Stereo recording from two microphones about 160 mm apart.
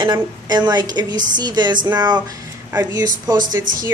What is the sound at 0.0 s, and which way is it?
Speech, 25° right (ahead or behind).